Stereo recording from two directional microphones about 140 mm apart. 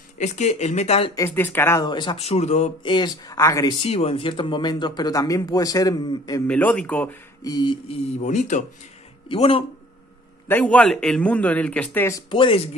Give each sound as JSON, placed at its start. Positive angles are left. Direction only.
{"t": 0.2, "sound": "speech", "side_deg": 55}
{"t": 1.1, "sound": "speech", "side_deg": 20}
{"t": 1.9, "sound": "speech", "side_deg": 35}
{"t": 2.1, "sound": "speech", "side_deg": 50}
{"t": 2.8, "sound": "speech", "side_deg": 35}
{"t": 3.8, "sound": "speech", "side_deg": 45}
{"t": 6.4, "sound": "a man's voice", "side_deg": 10}
{"t": 7.4, "sound": "speech", "side_deg": 30}
{"t": 8.2, "sound": "speech", "side_deg": 55}
{"t": 9.3, "sound": "speech", "side_deg": 40}
{"t": 10.5, "sound": "a man's voice", "side_deg": 10}
{"t": 12.3, "sound": "speech", "side_deg": 40}